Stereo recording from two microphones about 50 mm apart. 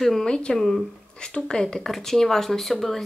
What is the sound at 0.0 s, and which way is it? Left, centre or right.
Speech, centre.